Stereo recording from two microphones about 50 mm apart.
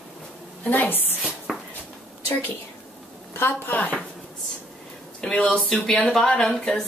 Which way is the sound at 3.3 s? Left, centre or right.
Left.